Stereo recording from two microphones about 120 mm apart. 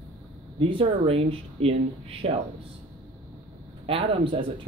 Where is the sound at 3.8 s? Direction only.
45° right (ahead or behind).